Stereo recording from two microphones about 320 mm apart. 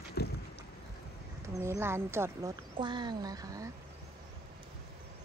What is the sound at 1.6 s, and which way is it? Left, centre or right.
Speech, centre.